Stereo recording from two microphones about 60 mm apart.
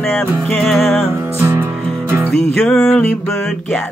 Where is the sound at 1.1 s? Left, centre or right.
Right.